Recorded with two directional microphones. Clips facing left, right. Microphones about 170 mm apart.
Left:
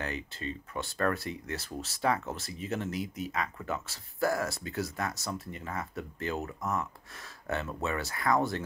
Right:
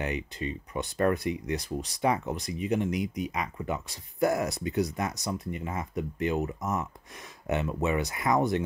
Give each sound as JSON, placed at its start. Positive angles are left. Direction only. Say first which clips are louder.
{"t": 0.0, "sound": "speech", "louder": "right 4 dB", "side_deg": -15}